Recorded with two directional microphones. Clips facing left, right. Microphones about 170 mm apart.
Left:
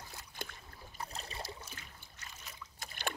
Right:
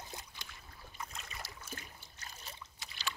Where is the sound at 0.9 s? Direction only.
35° left (ahead or behind).